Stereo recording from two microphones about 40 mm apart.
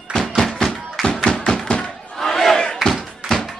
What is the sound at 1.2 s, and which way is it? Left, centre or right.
Tap, left.